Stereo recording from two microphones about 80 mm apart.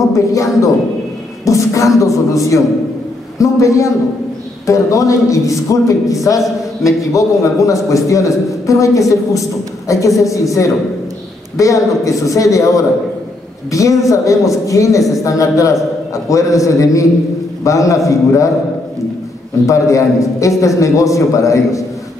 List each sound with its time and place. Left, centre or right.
0.1 s a man's voice: left
13.7 s a man's voice: left
19.6 s a man's voice: left